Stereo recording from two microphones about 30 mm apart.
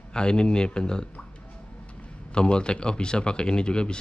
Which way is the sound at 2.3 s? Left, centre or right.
Left.